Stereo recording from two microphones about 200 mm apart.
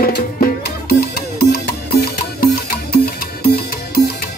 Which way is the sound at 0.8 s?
50° left (ahead or behind).